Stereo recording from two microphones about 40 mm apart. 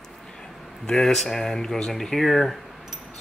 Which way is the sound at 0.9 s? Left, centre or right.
Centre.